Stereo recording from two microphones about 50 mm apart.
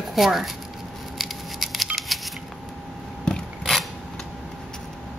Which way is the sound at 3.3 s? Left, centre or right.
Centre.